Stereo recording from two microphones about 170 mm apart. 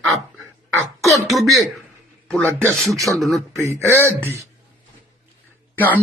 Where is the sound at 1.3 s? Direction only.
Centre (ahead or behind).